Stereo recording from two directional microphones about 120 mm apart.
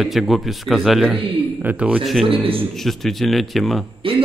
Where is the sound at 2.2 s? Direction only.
50° right (ahead or behind).